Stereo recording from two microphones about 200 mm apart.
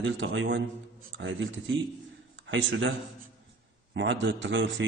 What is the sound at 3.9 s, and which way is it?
Speech, 65° right (ahead or behind).